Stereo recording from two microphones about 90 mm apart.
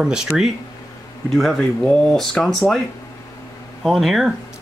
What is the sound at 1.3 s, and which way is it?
Speech, 5° left (ahead or behind).